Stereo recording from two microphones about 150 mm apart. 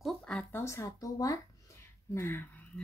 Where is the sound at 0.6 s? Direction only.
20° left (ahead or behind).